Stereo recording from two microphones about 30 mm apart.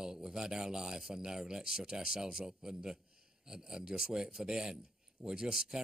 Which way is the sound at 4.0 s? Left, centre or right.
Right.